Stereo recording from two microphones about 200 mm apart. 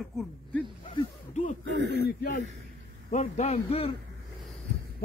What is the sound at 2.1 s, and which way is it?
Speech, 50° left (ahead or behind).